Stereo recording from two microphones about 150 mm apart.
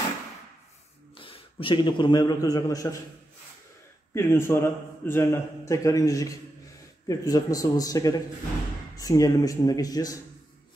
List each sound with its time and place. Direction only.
1.1 s a man's voice: 35° left (ahead or behind)
4.1 s a man's voice: 15° left (ahead or behind)